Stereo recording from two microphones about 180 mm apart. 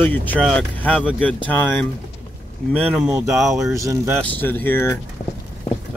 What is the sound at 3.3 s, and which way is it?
Speech, centre (ahead or behind).